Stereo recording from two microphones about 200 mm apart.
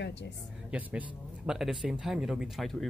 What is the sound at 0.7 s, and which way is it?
Speech, 5° right (ahead or behind).